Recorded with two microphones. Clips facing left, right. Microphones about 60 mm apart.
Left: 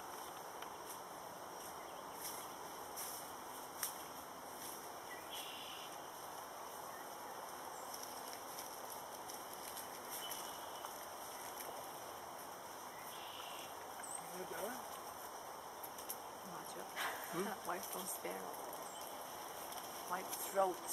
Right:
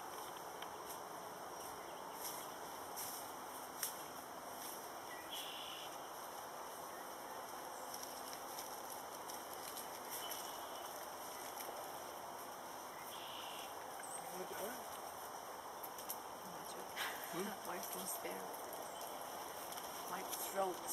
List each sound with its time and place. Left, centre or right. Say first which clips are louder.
17.0 s dog: left 3 dB; centre
20.6 s speech: left 4 dB; left